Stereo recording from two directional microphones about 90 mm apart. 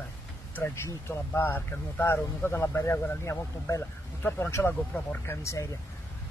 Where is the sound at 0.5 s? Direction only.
25° left (ahead or behind).